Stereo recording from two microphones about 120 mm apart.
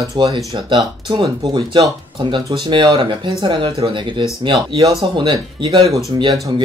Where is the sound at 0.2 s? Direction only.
40° right (ahead or behind).